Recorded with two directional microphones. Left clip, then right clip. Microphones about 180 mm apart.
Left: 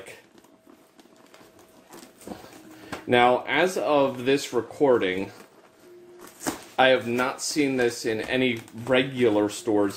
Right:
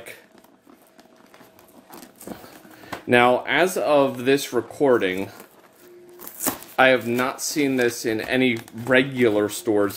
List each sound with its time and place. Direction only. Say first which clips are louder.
2.3 s a sound: right 2 dB; 35° right (ahead or behind)
3.1 s speech: right 3 dB; 35° right (ahead or behind)
6.8 s speech: right 3 dB; 35° right (ahead or behind)